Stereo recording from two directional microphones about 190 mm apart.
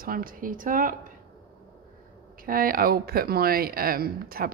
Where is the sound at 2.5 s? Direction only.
50° right (ahead or behind).